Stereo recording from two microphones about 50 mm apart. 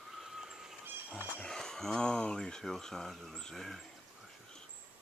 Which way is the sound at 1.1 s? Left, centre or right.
Left.